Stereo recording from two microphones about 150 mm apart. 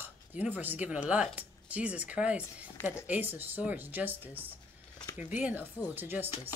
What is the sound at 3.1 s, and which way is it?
A woman's voice, 15° right (ahead or behind).